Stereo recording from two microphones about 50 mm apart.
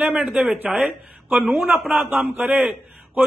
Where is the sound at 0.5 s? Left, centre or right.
Right.